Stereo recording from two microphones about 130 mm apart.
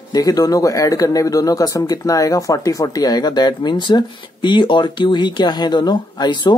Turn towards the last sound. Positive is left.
turn(degrees=35)  # may be behind; listen again after turning